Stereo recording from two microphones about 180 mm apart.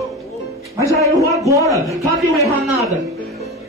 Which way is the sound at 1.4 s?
15° right (ahead or behind).